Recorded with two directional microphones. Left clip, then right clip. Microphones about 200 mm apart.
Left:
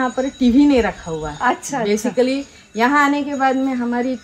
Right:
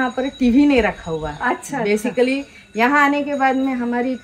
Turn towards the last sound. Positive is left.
turn(degrees=0)  # may be behind; listen again after turning